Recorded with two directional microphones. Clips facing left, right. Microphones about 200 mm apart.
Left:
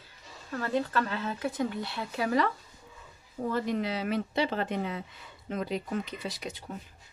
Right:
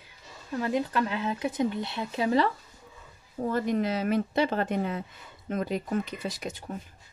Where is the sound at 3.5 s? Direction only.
45° right (ahead or behind).